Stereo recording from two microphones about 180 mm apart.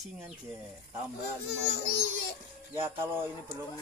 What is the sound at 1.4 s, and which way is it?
Speech, 60° left (ahead or behind).